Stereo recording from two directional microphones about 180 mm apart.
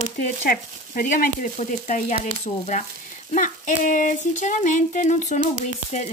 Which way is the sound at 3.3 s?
45° left (ahead or behind).